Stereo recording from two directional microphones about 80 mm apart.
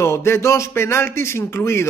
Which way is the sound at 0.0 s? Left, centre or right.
Left.